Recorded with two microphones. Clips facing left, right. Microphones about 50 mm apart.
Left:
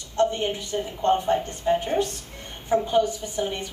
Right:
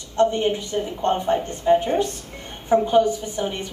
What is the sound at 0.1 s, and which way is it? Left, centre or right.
A woman's voice, right.